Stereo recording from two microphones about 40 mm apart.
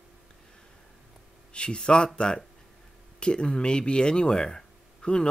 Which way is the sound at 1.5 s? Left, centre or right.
Left.